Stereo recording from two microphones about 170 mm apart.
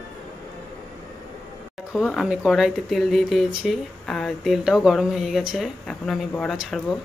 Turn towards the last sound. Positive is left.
turn(degrees=0)  # may be behind; listen again after turning